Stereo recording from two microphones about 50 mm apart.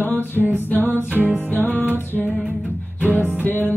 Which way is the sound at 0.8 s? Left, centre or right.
Right.